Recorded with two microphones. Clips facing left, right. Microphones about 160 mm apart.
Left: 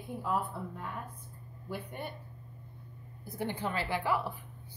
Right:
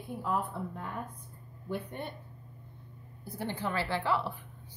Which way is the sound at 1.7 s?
10° left (ahead or behind).